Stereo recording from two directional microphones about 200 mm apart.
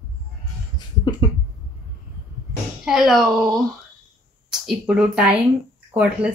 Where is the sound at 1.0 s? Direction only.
25° left (ahead or behind).